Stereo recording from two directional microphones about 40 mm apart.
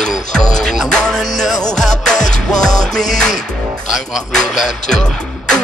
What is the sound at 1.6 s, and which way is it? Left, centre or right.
Music, centre.